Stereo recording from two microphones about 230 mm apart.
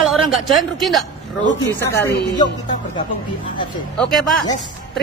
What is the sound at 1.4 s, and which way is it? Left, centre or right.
Speech, left.